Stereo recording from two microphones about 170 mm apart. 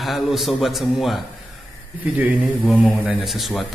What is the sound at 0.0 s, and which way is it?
A man's voice, centre (ahead or behind).